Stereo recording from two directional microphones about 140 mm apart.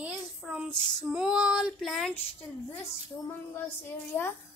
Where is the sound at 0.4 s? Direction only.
5° right (ahead or behind).